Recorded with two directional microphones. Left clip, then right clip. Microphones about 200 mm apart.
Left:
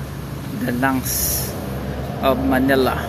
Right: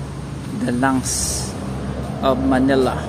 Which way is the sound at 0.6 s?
15° right (ahead or behind).